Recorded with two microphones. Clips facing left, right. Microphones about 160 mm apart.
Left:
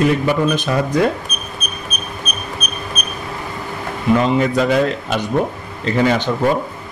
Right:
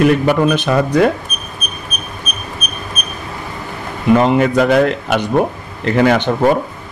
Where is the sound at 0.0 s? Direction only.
65° right (ahead or behind).